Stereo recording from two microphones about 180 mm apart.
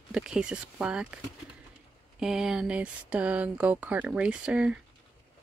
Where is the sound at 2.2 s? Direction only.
5° right (ahead or behind).